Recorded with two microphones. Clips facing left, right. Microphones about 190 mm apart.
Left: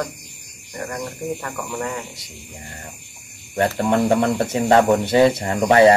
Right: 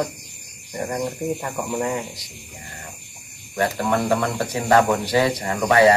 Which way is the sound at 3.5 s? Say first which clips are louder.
Left 3 dB; 25° left (ahead or behind).